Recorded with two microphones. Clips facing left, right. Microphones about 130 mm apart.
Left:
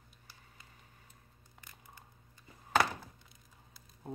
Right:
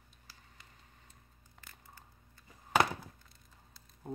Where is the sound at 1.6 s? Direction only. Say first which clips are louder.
Even; 15° left (ahead or behind).